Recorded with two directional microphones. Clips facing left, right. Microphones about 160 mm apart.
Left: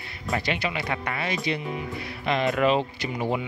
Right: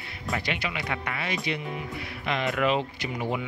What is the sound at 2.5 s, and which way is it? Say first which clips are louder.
Speech: left 3 dB; 35° left (ahead or behind).